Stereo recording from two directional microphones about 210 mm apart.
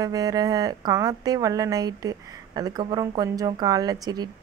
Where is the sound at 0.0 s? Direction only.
15° right (ahead or behind).